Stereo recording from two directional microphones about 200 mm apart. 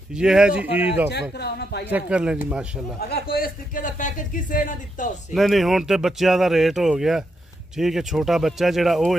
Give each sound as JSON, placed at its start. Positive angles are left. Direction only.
{"t": 0.1, "sound": "speech", "side_deg": -5}
{"t": 1.4, "sound": "speech", "side_deg": 55}
{"t": 1.9, "sound": "speech", "side_deg": -5}
{"t": 3.0, "sound": "speech", "side_deg": 50}
{"t": 5.3, "sound": "speech", "side_deg": 0}